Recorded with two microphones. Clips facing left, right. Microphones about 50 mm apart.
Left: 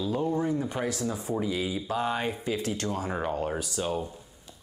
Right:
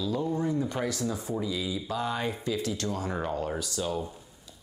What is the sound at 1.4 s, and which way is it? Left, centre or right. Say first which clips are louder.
Speech: left 2 dB; left.